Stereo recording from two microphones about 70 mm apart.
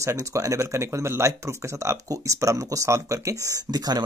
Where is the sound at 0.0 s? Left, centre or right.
Right.